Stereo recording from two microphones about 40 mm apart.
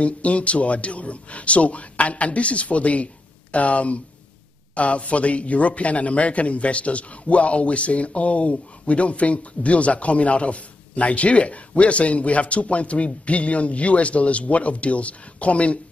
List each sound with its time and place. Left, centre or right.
0.0 s a man's voice: left